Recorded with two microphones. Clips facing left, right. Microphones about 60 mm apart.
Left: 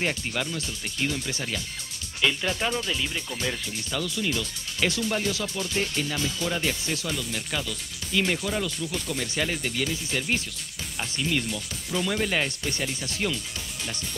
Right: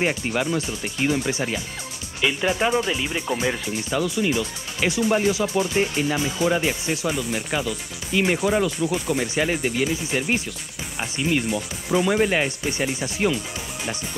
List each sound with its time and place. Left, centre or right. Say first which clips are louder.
0.0 s speech: right 6 dB; centre